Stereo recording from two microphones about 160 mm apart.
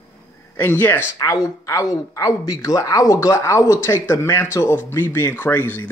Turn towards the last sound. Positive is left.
turn(degrees=10)  # may be behind; listen again after turning